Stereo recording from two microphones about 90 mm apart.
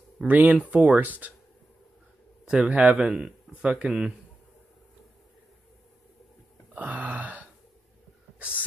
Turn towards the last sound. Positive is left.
turn(degrees=-15)  # may be behind; listen again after turning